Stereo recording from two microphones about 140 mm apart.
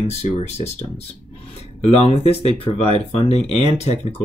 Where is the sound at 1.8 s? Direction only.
45° left (ahead or behind).